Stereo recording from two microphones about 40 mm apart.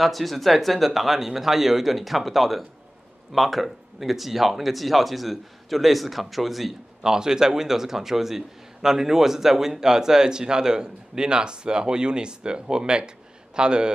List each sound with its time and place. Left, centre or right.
0.0 s speech: centre
7.0 s a man's voice: centre